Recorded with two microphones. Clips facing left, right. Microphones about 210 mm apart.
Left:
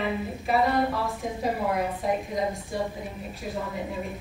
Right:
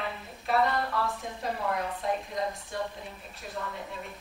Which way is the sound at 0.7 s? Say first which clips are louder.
Left 5 dB; 20° left (ahead or behind).